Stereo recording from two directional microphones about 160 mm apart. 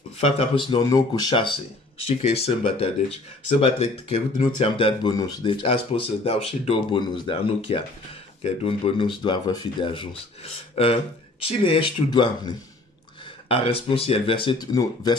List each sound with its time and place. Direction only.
0.2 s speech: 35° left (ahead or behind)